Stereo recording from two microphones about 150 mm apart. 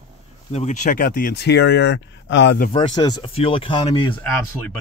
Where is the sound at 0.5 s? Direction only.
55° left (ahead or behind); by 1.6 s 90° left.